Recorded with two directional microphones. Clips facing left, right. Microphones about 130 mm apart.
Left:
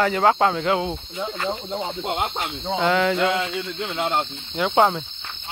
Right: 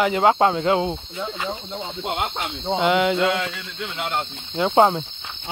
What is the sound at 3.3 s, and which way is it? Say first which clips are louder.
Speech: left 1 dB; 25° left (ahead or behind).